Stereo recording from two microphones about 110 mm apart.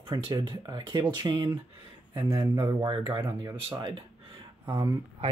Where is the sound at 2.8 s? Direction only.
50° right (ahead or behind).